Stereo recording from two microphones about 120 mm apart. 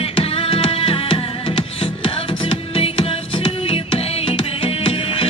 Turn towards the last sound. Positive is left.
turn(degrees=50)  # may be behind; listen again after turning